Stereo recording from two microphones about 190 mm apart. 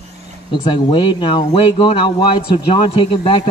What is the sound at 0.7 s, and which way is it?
A man's voice, 25° left (ahead or behind).